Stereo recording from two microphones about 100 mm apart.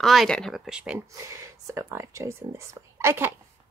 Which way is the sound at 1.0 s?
30° right (ahead or behind).